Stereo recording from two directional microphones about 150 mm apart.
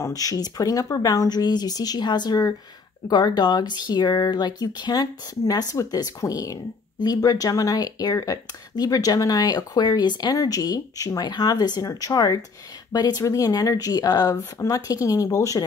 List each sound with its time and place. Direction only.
0.0 s speech: 25° left (ahead or behind)